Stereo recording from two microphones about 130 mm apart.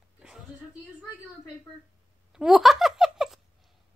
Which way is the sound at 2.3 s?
5° right (ahead or behind).